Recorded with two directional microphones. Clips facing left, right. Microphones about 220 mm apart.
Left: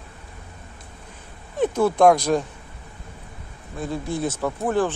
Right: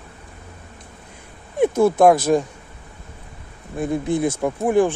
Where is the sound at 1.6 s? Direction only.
10° right (ahead or behind).